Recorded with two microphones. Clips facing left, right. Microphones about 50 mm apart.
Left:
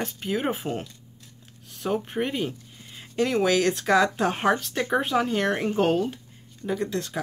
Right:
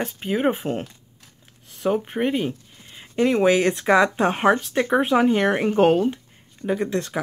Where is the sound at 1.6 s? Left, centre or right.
Centre.